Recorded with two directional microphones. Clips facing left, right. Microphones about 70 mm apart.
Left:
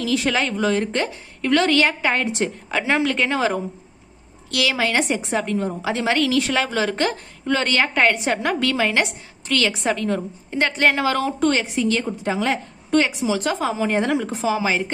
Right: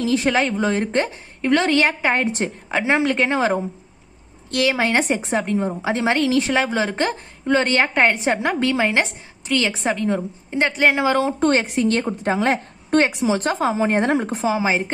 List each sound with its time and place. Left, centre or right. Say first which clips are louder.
0.0 s a woman's voice: right 2 dB; right
11.3 s a woman's voice: right 2 dB; right
11.6 s a woman's voice: right 2 dB; right
14.4 s a woman's voice: even; right